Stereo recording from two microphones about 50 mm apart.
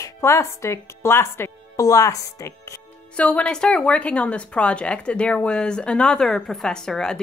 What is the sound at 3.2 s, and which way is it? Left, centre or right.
A woman's voice, left.